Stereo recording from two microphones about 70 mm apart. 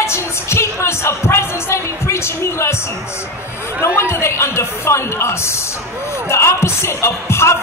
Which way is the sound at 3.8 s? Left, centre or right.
Left.